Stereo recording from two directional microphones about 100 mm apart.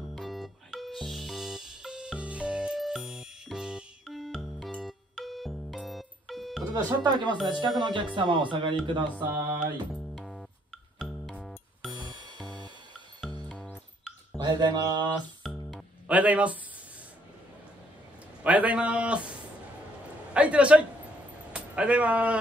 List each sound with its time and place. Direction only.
0.0 s music: centre (ahead or behind)
6.7 s speech: 45° right (ahead or behind)
9.3 s music: 30° right (ahead or behind)
9.9 s music: centre (ahead or behind)
11.9 s music: 50° right (ahead or behind)
13.2 s music: 5° right (ahead or behind)
14.4 s speech: 45° right (ahead or behind)
15.4 s music: centre (ahead or behind)
16.1 s a man's voice: 15° right (ahead or behind)
18.4 s a man's voice: 15° right (ahead or behind)
20.3 s a man's voice: 10° right (ahead or behind)